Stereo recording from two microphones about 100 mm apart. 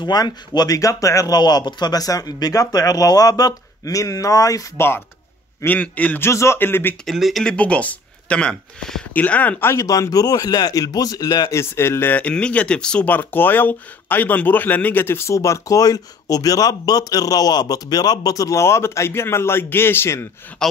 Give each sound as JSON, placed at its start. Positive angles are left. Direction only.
{"t": 0.0, "sound": "speech", "side_deg": 40}
{"t": 5.6, "sound": "speech", "side_deg": 15}
{"t": 7.1, "sound": "speech", "side_deg": 0}
{"t": 7.5, "sound": "speech", "side_deg": 10}
{"t": 9.8, "sound": "speech", "side_deg": 35}